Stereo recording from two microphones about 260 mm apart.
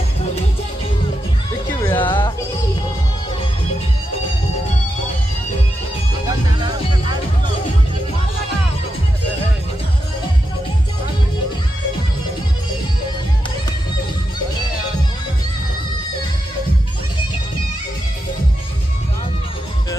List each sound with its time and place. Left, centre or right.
1.8 s music: centre
6.2 s music: centre